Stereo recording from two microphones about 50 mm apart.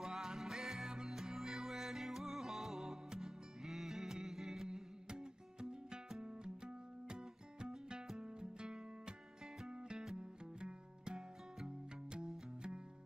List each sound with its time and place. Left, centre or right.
0.0 s music: centre